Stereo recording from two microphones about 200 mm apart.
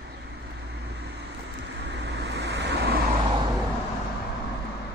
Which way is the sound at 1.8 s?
60° right (ahead or behind).